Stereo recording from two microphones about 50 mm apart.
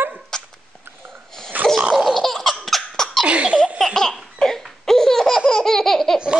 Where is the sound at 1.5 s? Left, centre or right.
Right.